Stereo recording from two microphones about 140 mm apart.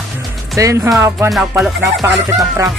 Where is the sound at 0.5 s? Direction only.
20° right (ahead or behind).